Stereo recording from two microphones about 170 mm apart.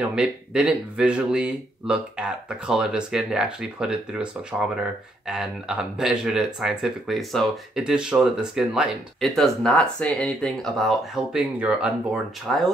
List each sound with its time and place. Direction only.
0.0 s speech: 5° right (ahead or behind)